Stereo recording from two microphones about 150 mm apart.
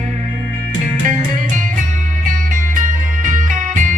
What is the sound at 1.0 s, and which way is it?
Music, 60° right (ahead or behind).